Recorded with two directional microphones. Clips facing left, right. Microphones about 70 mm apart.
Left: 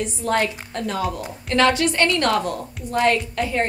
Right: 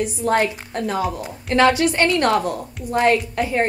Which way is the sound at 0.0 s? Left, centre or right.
Centre.